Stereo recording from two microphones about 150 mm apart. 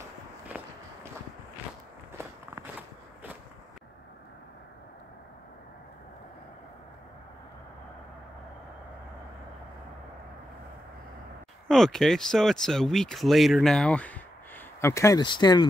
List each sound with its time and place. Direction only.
2.1 s walk: 15° right (ahead or behind)
11.6 s speech: 5° left (ahead or behind); by 15.2 s 20° left (ahead or behind)
15.2 s speech: 30° left (ahead or behind)